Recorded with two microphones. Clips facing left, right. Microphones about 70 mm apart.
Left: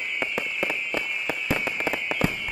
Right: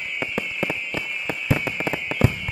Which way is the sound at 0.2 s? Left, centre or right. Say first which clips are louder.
Right 2 dB; centre.